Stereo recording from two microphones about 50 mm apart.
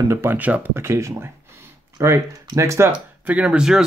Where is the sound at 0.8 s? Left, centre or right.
Right.